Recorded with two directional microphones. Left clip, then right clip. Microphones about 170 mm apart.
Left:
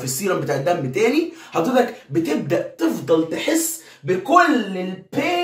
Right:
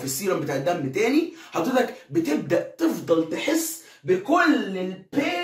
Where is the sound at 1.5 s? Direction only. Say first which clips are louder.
Left 5 dB; centre (ahead or behind).